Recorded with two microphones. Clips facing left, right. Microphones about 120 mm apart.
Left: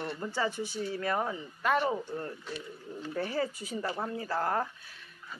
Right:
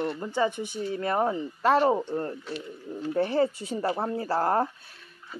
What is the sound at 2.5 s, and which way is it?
Speech, centre (ahead or behind).